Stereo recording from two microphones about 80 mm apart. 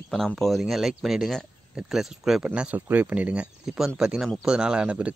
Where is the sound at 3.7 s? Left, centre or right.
Centre.